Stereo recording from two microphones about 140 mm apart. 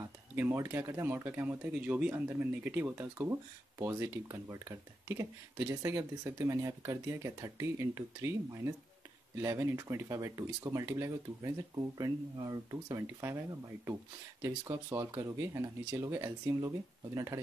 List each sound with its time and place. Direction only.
0.4 s speech: 15° right (ahead or behind)